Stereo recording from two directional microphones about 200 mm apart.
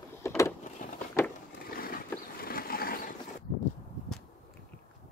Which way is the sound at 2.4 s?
45° left (ahead or behind).